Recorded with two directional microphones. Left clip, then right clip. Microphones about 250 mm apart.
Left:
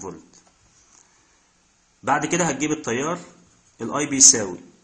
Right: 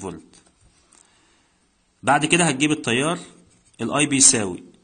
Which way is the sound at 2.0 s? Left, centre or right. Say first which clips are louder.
Right 3 dB; right.